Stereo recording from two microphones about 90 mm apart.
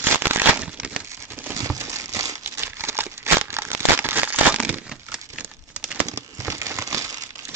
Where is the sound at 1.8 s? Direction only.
35° right (ahead or behind).